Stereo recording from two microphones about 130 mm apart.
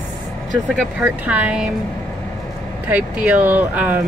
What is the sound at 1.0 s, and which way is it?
Speech, 10° right (ahead or behind).